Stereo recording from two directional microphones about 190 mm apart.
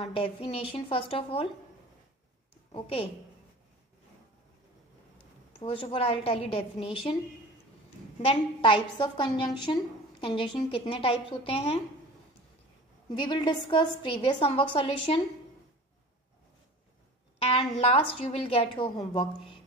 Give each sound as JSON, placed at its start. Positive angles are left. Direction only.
{"t": 0.0, "sound": "a woman's voice", "side_deg": 30}
{"t": 2.7, "sound": "a woman's voice", "side_deg": 30}
{"t": 5.6, "sound": "a woman's voice", "side_deg": 30}
{"t": 8.2, "sound": "a woman's voice", "side_deg": 30}
{"t": 13.2, "sound": "a woman's voice", "side_deg": 25}
{"t": 17.4, "sound": "a woman's voice", "side_deg": 30}